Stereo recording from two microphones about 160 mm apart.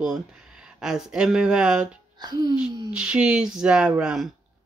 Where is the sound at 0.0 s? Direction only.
5° right (ahead or behind).